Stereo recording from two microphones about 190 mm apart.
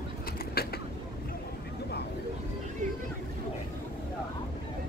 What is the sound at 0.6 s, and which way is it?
Vehicle, 55° left (ahead or behind).